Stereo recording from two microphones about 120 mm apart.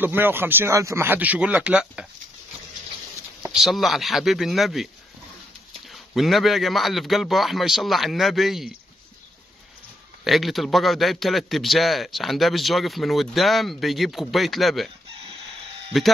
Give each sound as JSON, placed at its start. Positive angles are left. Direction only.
{"t": 0.0, "sound": "speech", "side_deg": -15}
{"t": 3.5, "sound": "a man's voice", "side_deg": 0}
{"t": 5.9, "sound": "a man's voice", "side_deg": 0}
{"t": 10.2, "sound": "a man's voice", "side_deg": 0}
{"t": 15.9, "sound": "a man's voice", "side_deg": 0}